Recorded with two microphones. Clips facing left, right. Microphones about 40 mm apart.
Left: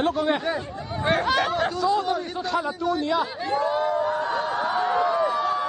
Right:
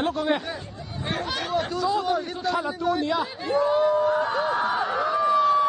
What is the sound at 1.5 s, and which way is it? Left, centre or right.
Speech, centre.